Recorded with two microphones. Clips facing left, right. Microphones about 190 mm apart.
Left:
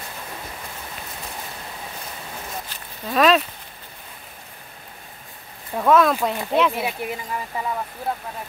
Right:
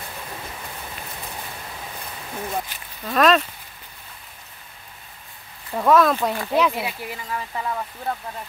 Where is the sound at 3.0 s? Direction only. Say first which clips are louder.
Even; centre (ahead or behind).